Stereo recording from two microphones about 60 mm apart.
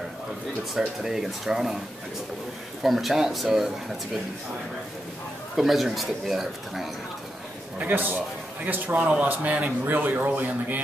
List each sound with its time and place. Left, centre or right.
0.7 s speech: centre
2.8 s speech: centre
5.6 s speech: centre
7.8 s a man's voice: right